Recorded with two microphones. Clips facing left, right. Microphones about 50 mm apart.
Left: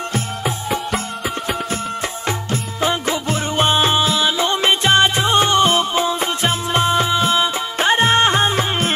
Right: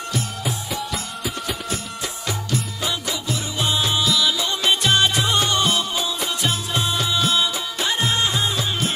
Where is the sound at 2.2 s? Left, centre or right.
Left.